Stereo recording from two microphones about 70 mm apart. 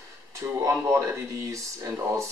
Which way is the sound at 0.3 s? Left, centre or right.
Right.